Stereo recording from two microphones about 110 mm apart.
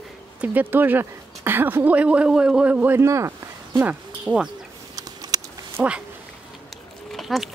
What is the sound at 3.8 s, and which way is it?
Speech, 15° right (ahead or behind).